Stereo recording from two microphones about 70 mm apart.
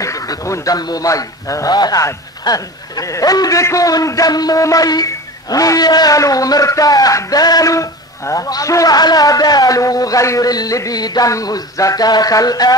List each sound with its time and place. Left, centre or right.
0.0 s a man's voice: left
6.1 s a man's voice: left
8.9 s a man's voice: left